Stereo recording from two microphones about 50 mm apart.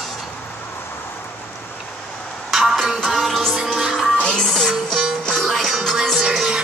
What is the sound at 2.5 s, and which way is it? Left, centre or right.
Music, centre.